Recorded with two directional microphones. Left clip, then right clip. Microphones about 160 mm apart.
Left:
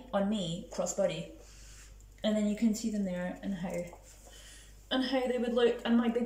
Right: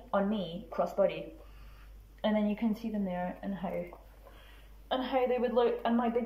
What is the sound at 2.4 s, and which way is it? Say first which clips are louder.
Speech: left 1 dB; 35° left (ahead or behind).